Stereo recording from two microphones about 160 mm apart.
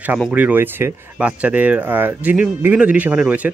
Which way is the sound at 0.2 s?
10° right (ahead or behind).